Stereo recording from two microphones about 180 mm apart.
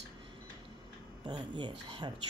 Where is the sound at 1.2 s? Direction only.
25° right (ahead or behind).